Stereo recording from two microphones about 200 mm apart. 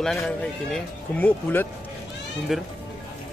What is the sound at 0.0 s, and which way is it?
A man's voice, centre (ahead or behind).